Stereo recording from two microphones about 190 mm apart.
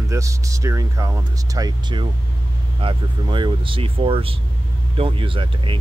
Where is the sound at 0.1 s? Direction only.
15° right (ahead or behind).